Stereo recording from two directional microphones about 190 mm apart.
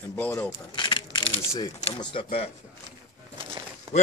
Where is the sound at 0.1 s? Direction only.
10° left (ahead or behind).